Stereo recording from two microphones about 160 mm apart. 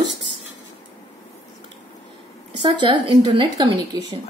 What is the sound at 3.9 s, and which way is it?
Speech, 25° right (ahead or behind).